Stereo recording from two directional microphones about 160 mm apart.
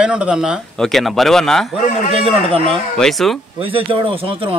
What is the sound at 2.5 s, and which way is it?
Speech, 35° right (ahead or behind).